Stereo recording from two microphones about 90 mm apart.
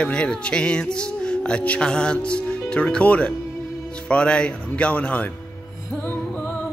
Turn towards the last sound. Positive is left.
turn(degrees=20)  # may be behind; listen again after turning